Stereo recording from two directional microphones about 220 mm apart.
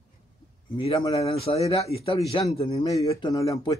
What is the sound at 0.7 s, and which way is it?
Speech, 25° left (ahead or behind).